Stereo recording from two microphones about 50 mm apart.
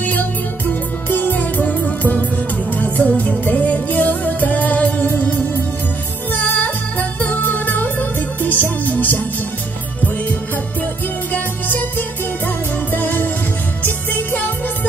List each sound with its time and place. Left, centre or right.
1.1 s music: left
12.9 s music: left